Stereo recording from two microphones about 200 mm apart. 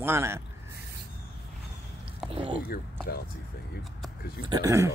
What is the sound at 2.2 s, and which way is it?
Speech, 30° right (ahead or behind).